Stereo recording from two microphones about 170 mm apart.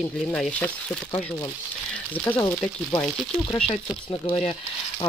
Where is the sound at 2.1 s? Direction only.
10° left (ahead or behind).